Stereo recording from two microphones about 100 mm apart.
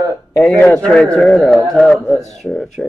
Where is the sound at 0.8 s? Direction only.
10° left (ahead or behind).